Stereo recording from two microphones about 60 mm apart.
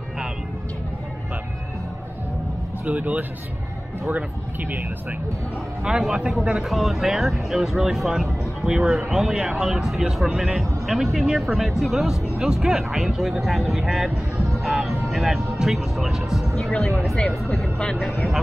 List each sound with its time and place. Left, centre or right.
2.8 s speech: right
5.9 s speech: centre
17.6 s speech: centre
18.0 s speech: centre